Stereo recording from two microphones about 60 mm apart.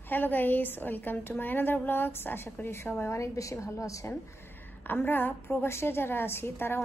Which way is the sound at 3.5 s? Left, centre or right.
Left.